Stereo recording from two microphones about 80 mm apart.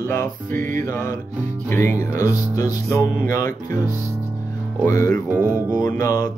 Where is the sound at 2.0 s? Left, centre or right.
Right.